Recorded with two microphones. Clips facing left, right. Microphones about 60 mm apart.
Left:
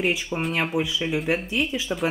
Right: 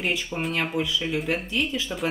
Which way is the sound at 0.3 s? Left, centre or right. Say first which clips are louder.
Left 2 dB; centre.